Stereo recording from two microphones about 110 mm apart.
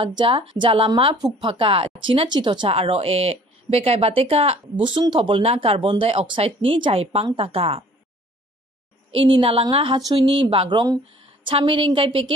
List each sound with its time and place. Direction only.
0.0 s speech: 55° right (ahead or behind)
2.7 s speech: 60° right (ahead or behind); by 5.4 s 45° right (ahead or behind)
5.4 s speech: 65° right (ahead or behind)
9.1 s speech: 60° right (ahead or behind)